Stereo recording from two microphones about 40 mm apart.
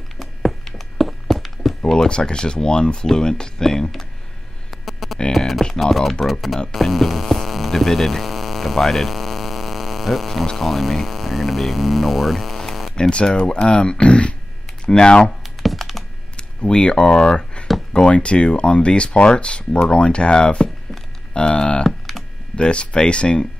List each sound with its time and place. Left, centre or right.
0.2 s a sound: centre
1.9 s speech: left
4.6 s a sound: centre
5.3 s speech: centre
6.7 s hum: centre
10.6 s speech: centre
13.1 s speech: left
15.6 s computer keyboard: centre
16.3 s speech: left
21.3 s typing: left
21.8 s computer keyboard: centre
22.6 s speech: left